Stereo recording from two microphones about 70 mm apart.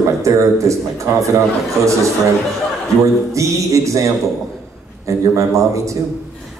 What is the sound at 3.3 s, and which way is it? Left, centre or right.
Speech, right.